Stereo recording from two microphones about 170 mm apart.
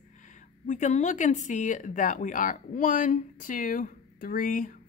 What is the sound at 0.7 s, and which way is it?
A woman's voice, 45° left (ahead or behind).